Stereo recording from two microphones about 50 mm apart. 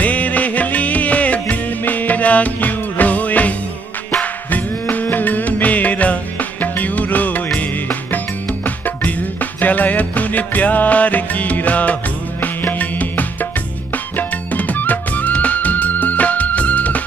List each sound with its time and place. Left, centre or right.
0.0 s music: left